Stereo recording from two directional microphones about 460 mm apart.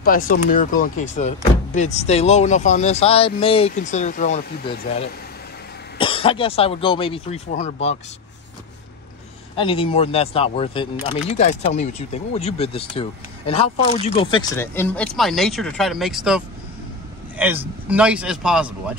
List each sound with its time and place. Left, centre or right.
0.0 s speech: centre
9.6 s speech: centre